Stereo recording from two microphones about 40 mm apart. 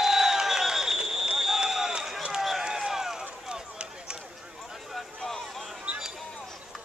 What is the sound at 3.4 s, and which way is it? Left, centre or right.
Run, right.